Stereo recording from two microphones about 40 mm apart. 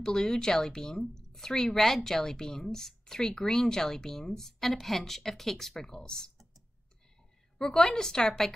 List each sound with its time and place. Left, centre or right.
0.0 s speech: centre
7.5 s speech: centre